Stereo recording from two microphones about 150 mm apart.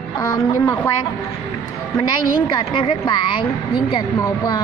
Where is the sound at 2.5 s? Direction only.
35° left (ahead or behind).